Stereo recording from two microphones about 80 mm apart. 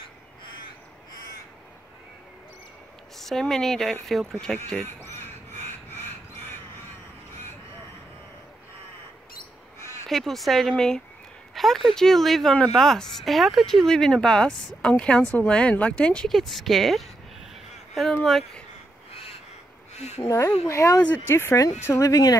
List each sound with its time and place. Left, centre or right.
3.2 s speech: centre
4.8 s duck: left
5.9 s a sound: left
10.0 s speech: centre
20.2 s speech: left